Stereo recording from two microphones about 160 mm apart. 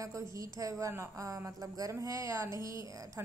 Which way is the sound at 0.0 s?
20° right (ahead or behind).